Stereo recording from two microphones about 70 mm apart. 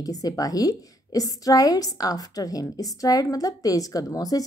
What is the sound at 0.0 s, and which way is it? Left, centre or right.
A woman's voice, left.